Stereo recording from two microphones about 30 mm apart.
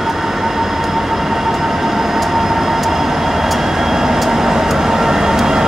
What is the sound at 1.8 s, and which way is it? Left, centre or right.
Vehicle, centre.